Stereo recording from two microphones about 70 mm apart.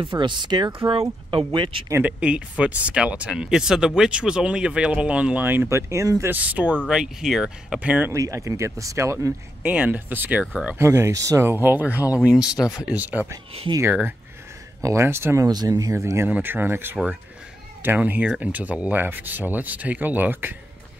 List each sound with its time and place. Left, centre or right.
0.2 s speech: right
2.0 s speech: centre; by 6.2 s right
6.2 s speech: right
6.9 s speech: centre
8.1 s speech: right
9.6 s speech: right
10.8 s speech: right
11.4 s speech: right
12.2 s speech: centre
14.8 s speech: right
15.0 s speech: right
15.4 s speech: right
16.3 s speech: right